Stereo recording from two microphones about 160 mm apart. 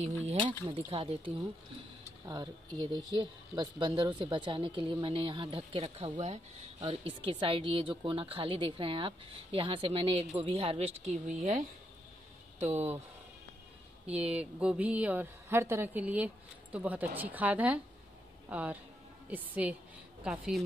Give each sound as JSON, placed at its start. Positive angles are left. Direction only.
{"t": 0.0, "sound": "speech", "side_deg": -35}
{"t": 6.8, "sound": "speech", "side_deg": -35}
{"t": 14.0, "sound": "a woman's voice", "side_deg": -10}